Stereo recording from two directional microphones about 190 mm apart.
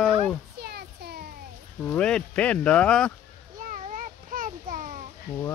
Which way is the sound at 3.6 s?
45° right (ahead or behind).